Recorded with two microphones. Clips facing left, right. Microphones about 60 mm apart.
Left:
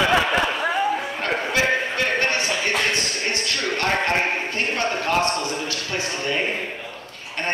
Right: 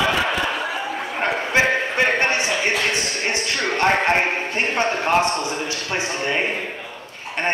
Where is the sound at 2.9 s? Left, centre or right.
Right.